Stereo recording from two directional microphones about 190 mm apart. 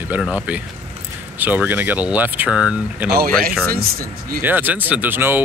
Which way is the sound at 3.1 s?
50° right (ahead or behind).